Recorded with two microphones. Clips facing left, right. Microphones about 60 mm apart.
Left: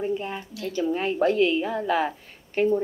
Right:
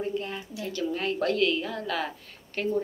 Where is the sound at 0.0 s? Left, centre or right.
Centre.